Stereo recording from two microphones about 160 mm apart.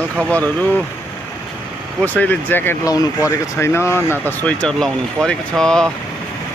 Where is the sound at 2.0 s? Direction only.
10° left (ahead or behind).